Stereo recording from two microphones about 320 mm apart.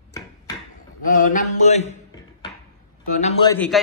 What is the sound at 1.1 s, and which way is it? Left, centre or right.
Mantra, left.